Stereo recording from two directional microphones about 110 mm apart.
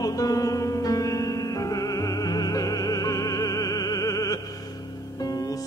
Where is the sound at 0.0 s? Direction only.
35° left (ahead or behind).